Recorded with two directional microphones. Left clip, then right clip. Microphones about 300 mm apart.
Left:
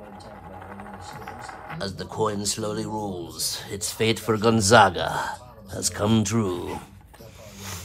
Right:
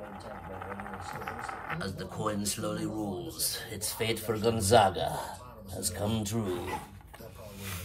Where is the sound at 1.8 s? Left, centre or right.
Centre.